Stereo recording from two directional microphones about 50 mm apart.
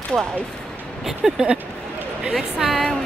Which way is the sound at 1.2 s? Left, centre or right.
Right.